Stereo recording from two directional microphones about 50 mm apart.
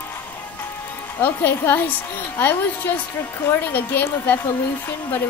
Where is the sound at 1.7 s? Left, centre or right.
Left.